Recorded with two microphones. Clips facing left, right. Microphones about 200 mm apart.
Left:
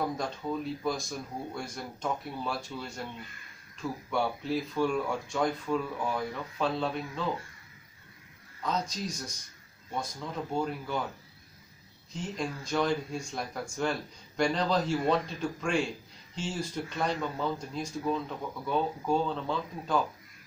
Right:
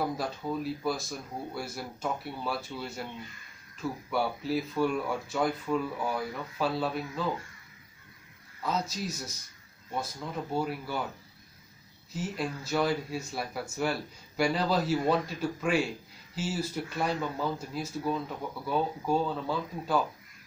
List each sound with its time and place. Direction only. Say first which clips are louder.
0.0 s speech: right 1 dB; 5° right (ahead or behind)
4.1 s speech: even; 5° right (ahead or behind)
8.6 s speech: even; 5° right (ahead or behind)
10.5 s speech: even; 5° right (ahead or behind)
12.1 s speech: right 1 dB; 5° right (ahead or behind)